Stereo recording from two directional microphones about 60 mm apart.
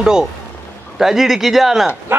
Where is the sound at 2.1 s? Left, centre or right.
Right.